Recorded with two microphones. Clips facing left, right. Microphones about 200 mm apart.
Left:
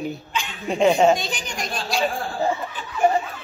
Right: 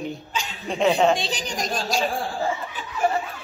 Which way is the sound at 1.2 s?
35° right (ahead or behind).